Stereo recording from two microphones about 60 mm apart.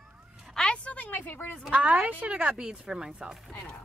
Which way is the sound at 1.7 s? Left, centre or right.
Centre.